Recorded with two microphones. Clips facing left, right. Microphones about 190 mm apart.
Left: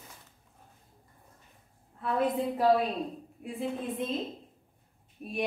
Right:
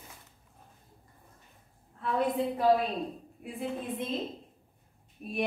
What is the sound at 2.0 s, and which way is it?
Speech, centre (ahead or behind).